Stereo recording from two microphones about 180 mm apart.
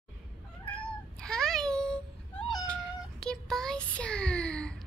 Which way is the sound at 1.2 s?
5° left (ahead or behind).